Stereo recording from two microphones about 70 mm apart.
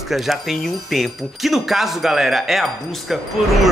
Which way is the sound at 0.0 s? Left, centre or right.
Centre.